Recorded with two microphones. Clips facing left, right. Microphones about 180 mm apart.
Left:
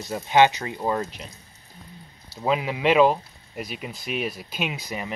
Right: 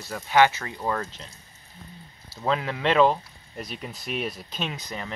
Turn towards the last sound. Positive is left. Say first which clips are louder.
# left 3 dB
turn(degrees=10)  # may be behind; listen again after turning